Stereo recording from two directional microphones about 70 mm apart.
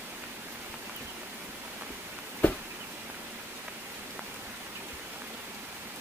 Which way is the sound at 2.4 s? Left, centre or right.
Left.